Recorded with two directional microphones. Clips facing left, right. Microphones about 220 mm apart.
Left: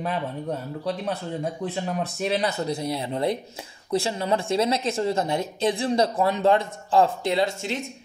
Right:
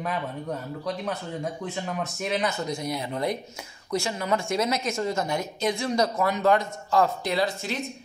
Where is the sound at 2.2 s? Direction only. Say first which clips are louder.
Left 2 dB; 35° left (ahead or behind).